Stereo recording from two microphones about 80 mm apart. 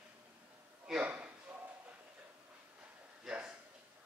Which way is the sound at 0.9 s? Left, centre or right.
Centre.